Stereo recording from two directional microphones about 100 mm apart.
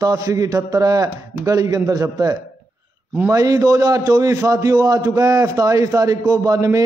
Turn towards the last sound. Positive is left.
turn(degrees=-35)  # may be behind; listen again after turning